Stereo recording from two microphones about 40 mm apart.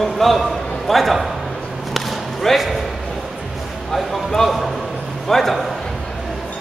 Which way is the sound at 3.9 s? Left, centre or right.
Centre.